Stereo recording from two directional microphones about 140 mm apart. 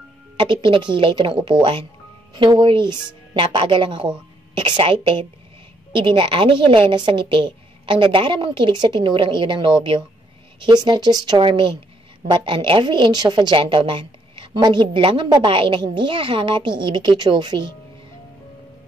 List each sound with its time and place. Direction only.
0.4 s a woman's voice: 35° right (ahead or behind)